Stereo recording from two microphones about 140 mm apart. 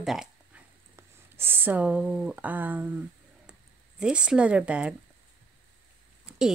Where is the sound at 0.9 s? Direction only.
15° right (ahead or behind).